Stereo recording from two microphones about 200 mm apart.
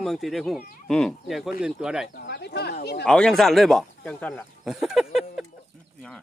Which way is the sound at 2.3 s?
55° left (ahead or behind).